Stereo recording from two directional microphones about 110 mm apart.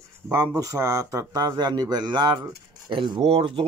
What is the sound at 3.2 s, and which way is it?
Speech, 65° right (ahead or behind).